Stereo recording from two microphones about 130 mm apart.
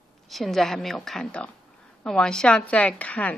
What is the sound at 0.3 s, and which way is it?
A woman's voice, centre (ahead or behind).